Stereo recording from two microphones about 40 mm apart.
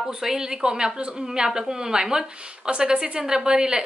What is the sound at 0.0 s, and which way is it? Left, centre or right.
A woman's voice, centre.